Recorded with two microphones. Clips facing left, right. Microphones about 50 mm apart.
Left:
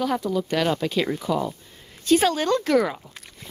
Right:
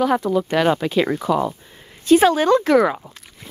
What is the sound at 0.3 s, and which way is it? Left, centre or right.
Speech, right.